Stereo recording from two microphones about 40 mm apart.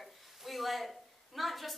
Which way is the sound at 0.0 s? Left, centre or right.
Centre.